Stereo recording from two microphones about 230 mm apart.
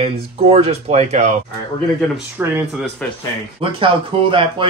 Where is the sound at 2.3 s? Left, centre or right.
Centre.